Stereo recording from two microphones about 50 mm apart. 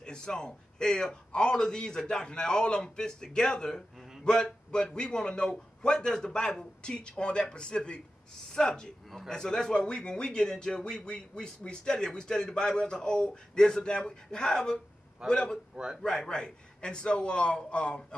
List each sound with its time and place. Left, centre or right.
0.0 s a man's voice: centre
15.7 s a man's voice: centre
16.0 s speech: centre